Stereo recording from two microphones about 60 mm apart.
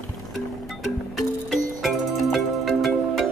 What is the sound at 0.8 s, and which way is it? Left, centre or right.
Music, centre.